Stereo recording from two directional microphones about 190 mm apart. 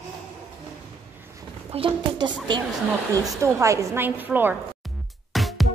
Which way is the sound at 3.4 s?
15° right (ahead or behind).